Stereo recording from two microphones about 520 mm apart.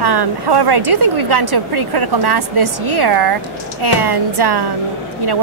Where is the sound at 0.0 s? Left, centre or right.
Right.